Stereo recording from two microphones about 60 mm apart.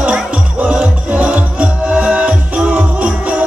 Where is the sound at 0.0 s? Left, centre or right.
Centre.